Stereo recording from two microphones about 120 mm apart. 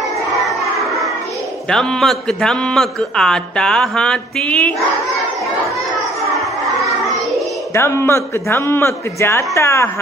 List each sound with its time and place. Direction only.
0.7 s music: centre (ahead or behind)
1.7 s a man's voice: 5° left (ahead or behind)
6.3 s children playing: centre (ahead or behind)
7.7 s a man's voice: 20° left (ahead or behind)